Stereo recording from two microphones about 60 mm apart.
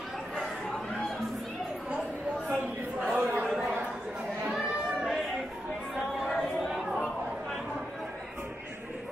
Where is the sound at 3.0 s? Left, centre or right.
Right.